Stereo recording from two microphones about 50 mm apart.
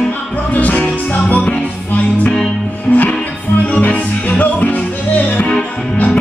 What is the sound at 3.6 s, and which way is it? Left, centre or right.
Music, left.